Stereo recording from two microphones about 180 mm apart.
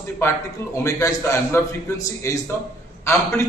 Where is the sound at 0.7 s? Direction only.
15° left (ahead or behind).